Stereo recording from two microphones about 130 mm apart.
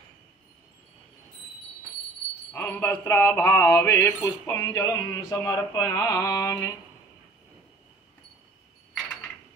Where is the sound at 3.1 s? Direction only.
20° left (ahead or behind).